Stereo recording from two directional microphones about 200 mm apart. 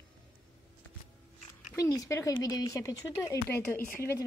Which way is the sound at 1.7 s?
15° left (ahead or behind).